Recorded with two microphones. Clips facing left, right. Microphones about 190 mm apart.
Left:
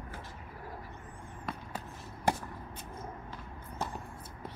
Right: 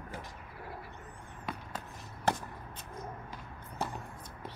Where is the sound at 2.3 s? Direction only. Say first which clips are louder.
Left 1 dB; 10° left (ahead or behind).